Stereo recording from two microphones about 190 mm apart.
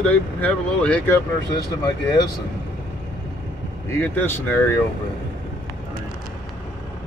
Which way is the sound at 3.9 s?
10° left (ahead or behind).